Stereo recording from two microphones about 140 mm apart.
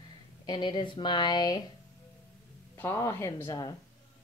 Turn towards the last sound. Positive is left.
turn(degrees=25)  # may be behind; listen again after turning